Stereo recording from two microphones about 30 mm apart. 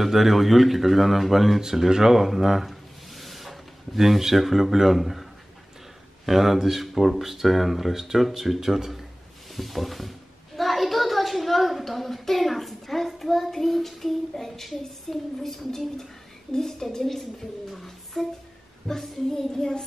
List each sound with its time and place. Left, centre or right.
0.0 s a man's voice: centre
1.9 s speech: centre
2.1 s speech: centre
2.7 s a sound: centre
6.2 s speech: centre
9.6 s a sound: centre